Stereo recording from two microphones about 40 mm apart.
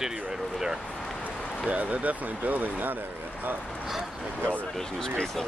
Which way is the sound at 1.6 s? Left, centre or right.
Right.